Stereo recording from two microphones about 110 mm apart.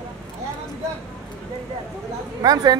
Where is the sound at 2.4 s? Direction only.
35° right (ahead or behind).